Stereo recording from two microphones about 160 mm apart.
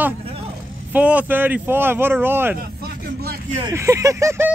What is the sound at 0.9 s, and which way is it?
Speech, 10° right (ahead or behind).